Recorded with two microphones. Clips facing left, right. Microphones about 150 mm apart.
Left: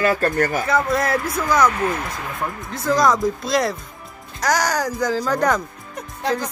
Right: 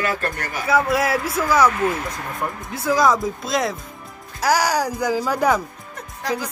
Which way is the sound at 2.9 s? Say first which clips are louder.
Left 1 dB; 5° right (ahead or behind).